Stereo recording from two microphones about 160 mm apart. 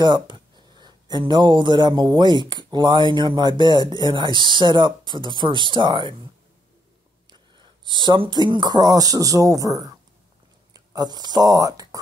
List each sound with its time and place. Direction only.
0.0 s speech: 30° right (ahead or behind)
7.2 s speech: 30° right (ahead or behind)